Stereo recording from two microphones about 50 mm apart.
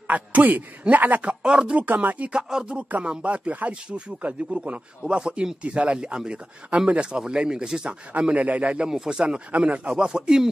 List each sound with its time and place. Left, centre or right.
0.1 s speech: right
1.4 s speech: centre
8.1 s speech: right
8.9 s speech: centre
9.5 s speech: right